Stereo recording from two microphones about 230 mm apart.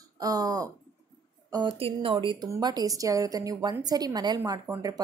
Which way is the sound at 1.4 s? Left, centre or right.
Centre.